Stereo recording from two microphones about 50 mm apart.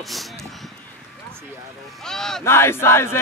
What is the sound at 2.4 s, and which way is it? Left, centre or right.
Battle cry, left.